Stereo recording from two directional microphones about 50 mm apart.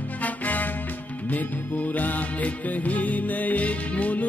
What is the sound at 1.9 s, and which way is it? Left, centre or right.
Music, left.